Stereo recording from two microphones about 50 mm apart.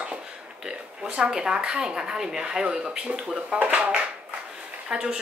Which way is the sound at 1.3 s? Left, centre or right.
Centre.